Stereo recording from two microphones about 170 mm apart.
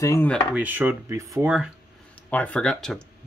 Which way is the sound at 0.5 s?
10° right (ahead or behind).